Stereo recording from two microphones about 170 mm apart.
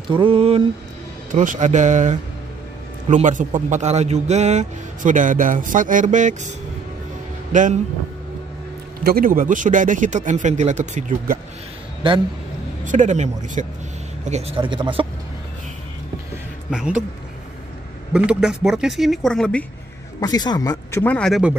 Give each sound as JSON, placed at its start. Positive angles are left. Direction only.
{"t": 0.1, "sound": "speech", "side_deg": -30}
{"t": 1.3, "sound": "speech", "side_deg": -50}
{"t": 7.5, "sound": "speech", "side_deg": -50}
{"t": 9.0, "sound": "speech", "side_deg": -60}
{"t": 12.0, "sound": "a man's voice", "side_deg": -30}
{"t": 12.8, "sound": "speech", "side_deg": -45}
{"t": 16.7, "sound": "speech", "side_deg": -5}
{"t": 18.1, "sound": "speech", "side_deg": -5}
{"t": 20.2, "sound": "speech", "side_deg": 20}
{"t": 21.0, "sound": "speech", "side_deg": 5}